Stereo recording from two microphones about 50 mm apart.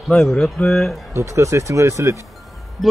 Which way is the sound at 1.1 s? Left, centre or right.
Right.